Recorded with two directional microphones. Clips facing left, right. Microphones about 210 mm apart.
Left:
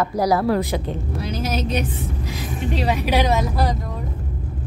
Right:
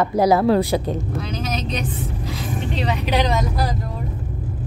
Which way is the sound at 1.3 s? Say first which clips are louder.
Left 5 dB; 10° left (ahead or behind).